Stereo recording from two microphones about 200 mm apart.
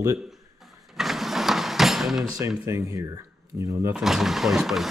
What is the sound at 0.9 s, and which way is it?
Vehicle, centre (ahead or behind).